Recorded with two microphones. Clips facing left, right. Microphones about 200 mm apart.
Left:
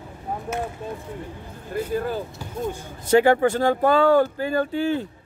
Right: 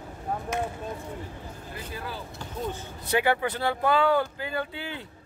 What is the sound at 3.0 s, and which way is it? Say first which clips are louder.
Speech: left 9 dB; 45° left (ahead or behind).